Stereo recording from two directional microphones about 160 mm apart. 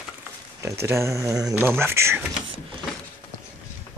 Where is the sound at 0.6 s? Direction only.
15° right (ahead or behind).